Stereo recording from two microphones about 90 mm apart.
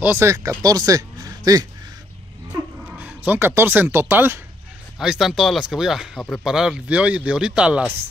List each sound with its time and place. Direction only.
0.2 s speech: 35° right (ahead or behind)
3.0 s speech: 20° right (ahead or behind)
4.9 s speech: 5° right (ahead or behind)